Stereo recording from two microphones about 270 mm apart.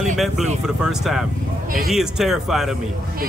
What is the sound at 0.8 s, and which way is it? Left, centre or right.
Speech, centre.